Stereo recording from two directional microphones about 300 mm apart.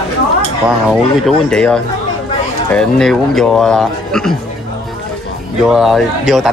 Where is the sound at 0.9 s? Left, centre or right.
Centre.